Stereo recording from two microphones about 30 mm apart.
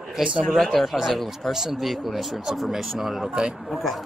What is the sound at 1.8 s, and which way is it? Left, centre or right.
Speech, centre.